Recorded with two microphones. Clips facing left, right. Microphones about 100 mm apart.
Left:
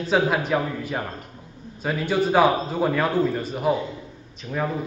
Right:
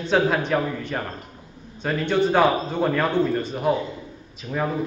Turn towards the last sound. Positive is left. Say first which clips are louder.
# right 1 dB
turn(degrees=-5)  # may be behind; listen again after turning